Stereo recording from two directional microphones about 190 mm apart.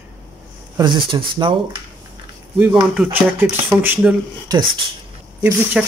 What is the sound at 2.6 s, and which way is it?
Speech, 5° right (ahead or behind).